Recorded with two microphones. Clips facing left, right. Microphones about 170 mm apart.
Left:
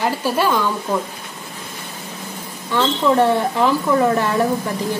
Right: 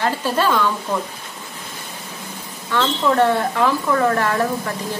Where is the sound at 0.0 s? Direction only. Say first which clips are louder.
Left 1 dB; 10° left (ahead or behind).